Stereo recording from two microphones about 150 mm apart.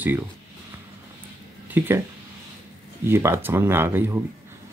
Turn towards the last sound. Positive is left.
turn(degrees=-15)  # may be behind; listen again after turning